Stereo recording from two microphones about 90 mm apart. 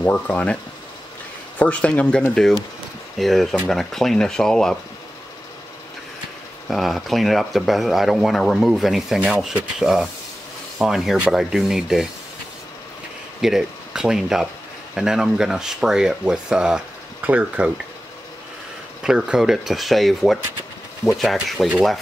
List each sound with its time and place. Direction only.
0.0 s speech: 20° left (ahead or behind)
1.6 s speech: 15° left (ahead or behind)
6.7 s speech: centre (ahead or behind)
13.4 s speech: 5° right (ahead or behind)
19.0 s speech: 5° right (ahead or behind)